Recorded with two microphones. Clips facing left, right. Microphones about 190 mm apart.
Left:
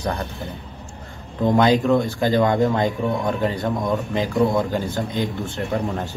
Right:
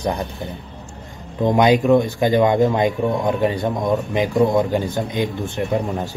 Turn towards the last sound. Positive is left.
turn(degrees=-20)  # may be behind; listen again after turning